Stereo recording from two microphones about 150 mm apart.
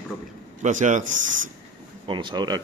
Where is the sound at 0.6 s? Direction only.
55° right (ahead or behind).